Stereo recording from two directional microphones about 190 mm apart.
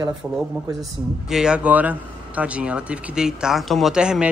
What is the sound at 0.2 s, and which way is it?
Speech, 10° right (ahead or behind).